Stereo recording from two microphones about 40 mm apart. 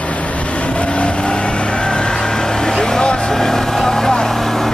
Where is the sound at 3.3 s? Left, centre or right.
Centre.